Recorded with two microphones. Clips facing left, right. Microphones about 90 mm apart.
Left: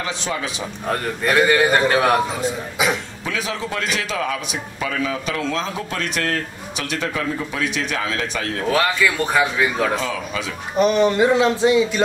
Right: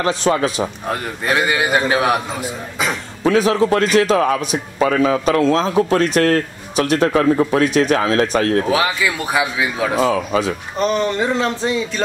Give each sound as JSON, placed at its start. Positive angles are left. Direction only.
{"t": 0.0, "sound": "a man's voice", "side_deg": -50}
{"t": 0.8, "sound": "a man's voice", "side_deg": -5}
{"t": 3.3, "sound": "a man's voice", "side_deg": -40}
{"t": 8.6, "sound": "a man's voice", "side_deg": -10}
{"t": 9.9, "sound": "a man's voice", "side_deg": -40}
{"t": 10.8, "sound": "speech", "side_deg": 5}